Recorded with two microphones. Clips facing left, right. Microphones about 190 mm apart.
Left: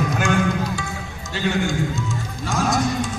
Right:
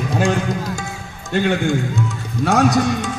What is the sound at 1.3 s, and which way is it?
A man's voice, 55° right (ahead or behind).